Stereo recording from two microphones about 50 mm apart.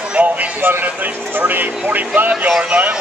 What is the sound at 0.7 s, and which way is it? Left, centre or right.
Speech, right.